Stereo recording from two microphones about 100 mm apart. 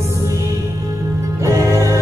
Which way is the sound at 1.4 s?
30° right (ahead or behind).